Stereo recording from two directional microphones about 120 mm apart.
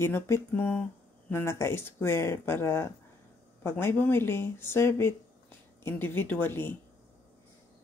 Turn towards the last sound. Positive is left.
turn(degrees=20)  # may be behind; listen again after turning